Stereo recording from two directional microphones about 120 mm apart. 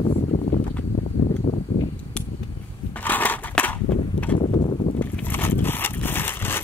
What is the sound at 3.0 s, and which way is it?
Crushing, 15° left (ahead or behind).